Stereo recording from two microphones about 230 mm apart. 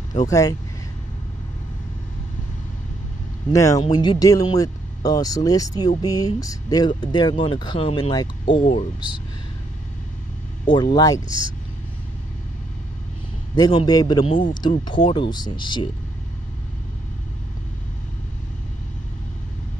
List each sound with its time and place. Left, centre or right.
0.3 s speech: centre
3.5 s speech: centre
10.7 s speech: centre
11.2 s speech: right
13.6 s speech: centre